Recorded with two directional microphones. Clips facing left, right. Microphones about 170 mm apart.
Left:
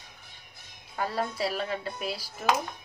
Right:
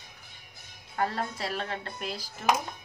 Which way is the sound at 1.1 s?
5° left (ahead or behind).